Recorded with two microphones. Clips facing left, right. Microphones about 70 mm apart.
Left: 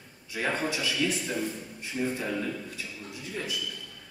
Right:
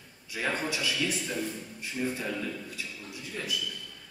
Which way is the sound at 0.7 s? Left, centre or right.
Centre.